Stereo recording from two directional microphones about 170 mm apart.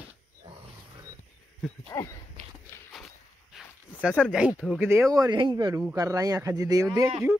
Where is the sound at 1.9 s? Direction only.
20° left (ahead or behind).